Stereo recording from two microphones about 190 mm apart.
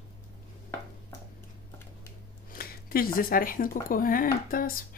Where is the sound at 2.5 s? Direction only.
50° left (ahead or behind).